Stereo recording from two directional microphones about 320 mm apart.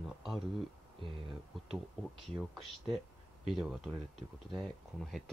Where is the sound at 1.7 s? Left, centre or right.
Centre.